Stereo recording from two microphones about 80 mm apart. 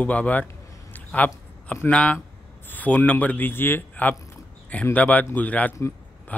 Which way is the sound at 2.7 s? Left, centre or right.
Left.